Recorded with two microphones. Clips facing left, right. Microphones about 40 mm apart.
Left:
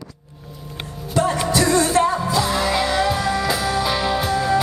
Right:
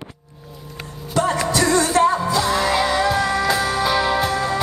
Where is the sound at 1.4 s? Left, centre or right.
Centre.